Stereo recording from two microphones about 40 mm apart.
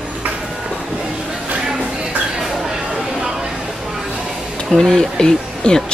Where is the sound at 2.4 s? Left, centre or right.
Centre.